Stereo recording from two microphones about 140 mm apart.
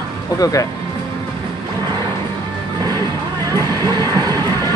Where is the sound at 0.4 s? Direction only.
25° left (ahead or behind).